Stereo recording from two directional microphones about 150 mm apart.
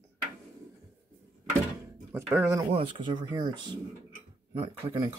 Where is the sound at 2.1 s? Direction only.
15° right (ahead or behind).